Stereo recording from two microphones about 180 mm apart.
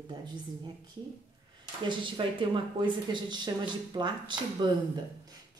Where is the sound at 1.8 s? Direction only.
25° right (ahead or behind).